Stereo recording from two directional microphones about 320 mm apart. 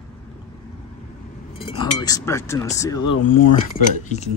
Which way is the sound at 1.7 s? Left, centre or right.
Centre.